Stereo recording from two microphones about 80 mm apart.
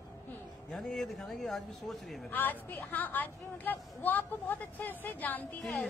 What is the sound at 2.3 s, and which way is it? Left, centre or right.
A woman's voice, left.